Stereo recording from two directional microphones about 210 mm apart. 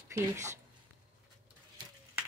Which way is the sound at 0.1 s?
15° right (ahead or behind).